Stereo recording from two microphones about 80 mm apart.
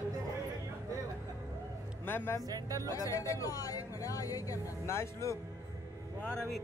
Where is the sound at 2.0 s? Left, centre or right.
Left.